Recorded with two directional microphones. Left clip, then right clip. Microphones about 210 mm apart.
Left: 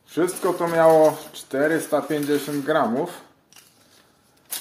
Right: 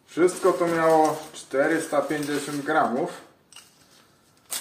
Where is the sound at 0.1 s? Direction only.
50° left (ahead or behind).